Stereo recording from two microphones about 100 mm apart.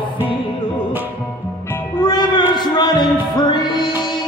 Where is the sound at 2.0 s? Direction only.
50° left (ahead or behind).